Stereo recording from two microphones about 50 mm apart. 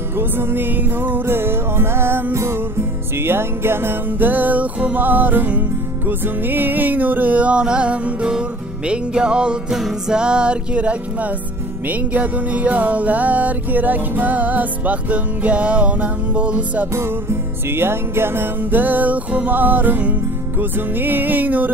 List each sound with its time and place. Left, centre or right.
0.2 s music: right; by 9.6 s centre
9.7 s music: centre
10.1 s music: centre
16.9 s music: right
20.5 s music: right